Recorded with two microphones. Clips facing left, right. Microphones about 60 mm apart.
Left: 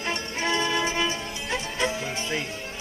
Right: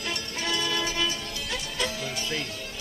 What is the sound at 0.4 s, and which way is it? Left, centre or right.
Music, left.